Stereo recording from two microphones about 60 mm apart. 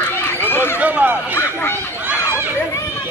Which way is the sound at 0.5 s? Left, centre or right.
Left.